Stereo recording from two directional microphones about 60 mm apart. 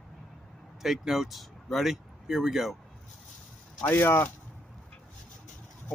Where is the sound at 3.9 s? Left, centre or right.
Left.